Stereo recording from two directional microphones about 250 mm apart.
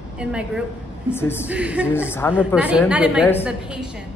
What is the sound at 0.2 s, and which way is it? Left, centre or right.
Speech, centre.